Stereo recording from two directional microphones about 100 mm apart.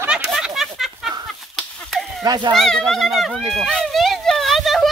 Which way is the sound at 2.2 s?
45° right (ahead or behind).